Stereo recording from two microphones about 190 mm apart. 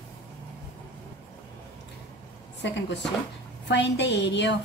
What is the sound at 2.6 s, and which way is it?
A woman's voice, 65° left (ahead or behind).